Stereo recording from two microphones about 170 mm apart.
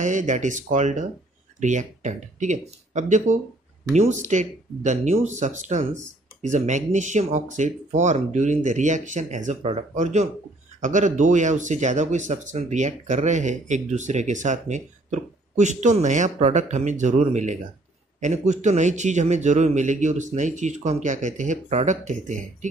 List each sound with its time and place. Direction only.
0.0 s speech: 45° right (ahead or behind)